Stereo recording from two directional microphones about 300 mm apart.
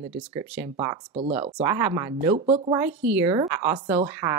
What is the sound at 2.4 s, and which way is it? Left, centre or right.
Speech, centre.